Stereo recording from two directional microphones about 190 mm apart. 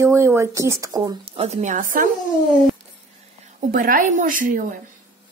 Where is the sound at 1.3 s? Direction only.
35° right (ahead or behind).